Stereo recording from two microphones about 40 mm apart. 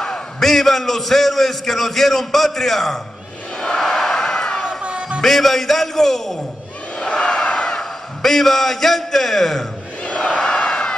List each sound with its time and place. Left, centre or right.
0.0 s a man's voice: centre
3.8 s a sound: centre
4.6 s music: right
5.2 s a man's voice: centre
7.0 s crowd: left
7.4 s a sound: left
8.2 s a man's voice: centre
10.0 s crowd: left